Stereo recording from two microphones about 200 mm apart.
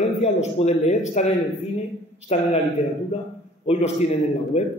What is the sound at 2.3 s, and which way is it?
Speech, 30° left (ahead or behind).